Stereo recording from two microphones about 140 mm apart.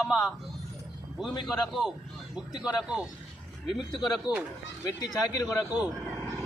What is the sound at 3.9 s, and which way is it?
Speech, 30° left (ahead or behind).